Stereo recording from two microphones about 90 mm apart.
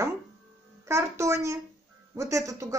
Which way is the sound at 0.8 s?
35° right (ahead or behind).